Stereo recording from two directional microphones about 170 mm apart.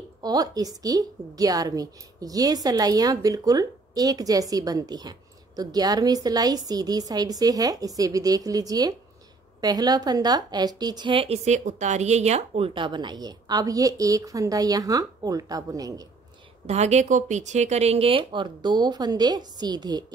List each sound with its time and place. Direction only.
0.2 s a woman's voice: 20° right (ahead or behind)
16.6 s a woman's voice: 40° right (ahead or behind); by 20.1 s 25° right (ahead or behind)